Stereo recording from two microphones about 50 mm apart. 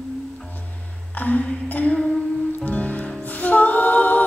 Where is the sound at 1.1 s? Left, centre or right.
Left.